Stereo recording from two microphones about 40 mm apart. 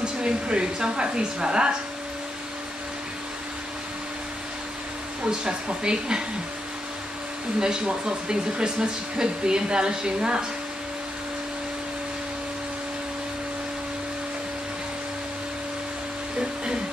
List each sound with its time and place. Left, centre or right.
0.0 s speech: right
5.2 s speech: right
7.6 s speech: centre
16.3 s music: right